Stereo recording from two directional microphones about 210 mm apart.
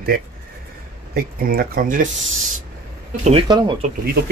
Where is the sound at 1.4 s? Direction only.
45° right (ahead or behind).